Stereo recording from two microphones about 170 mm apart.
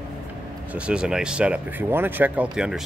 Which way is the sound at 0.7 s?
5° right (ahead or behind).